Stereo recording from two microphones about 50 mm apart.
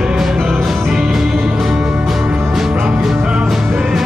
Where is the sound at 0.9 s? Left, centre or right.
Centre.